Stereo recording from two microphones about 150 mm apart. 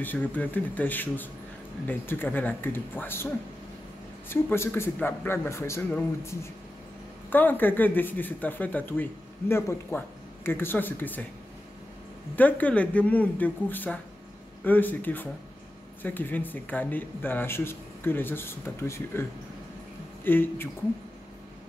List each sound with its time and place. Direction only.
0.0 s speech: 10° left (ahead or behind)
12.4 s speech: 10° left (ahead or behind)
20.2 s speech: 15° left (ahead or behind)